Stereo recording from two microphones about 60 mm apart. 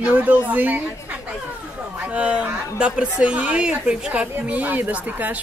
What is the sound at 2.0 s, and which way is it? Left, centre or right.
A woman's voice, right.